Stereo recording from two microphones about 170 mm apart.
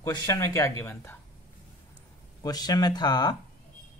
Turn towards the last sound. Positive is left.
turn(degrees=25)  # may be behind; listen again after turning